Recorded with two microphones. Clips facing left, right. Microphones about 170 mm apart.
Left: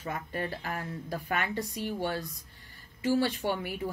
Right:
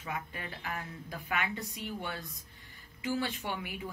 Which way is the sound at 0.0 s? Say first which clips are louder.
Left 5 dB; 45° left (ahead or behind).